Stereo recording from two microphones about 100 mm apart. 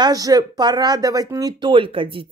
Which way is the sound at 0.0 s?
40° right (ahead or behind).